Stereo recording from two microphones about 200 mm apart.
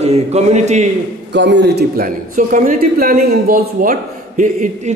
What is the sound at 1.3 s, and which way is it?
A man's voice, 60° right (ahead or behind).